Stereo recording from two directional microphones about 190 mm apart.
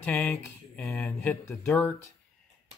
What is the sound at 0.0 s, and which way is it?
Speech, 5° left (ahead or behind).